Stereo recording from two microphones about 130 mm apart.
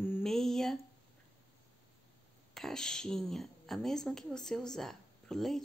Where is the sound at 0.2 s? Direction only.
5° left (ahead or behind).